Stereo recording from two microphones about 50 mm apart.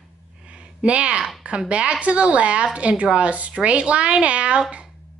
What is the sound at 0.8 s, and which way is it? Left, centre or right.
A woman's voice, right.